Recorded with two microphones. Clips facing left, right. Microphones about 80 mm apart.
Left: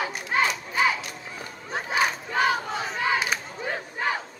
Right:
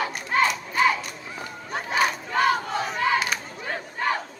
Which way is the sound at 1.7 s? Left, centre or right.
Centre.